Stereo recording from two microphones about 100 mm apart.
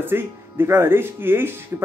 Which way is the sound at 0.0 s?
20° right (ahead or behind).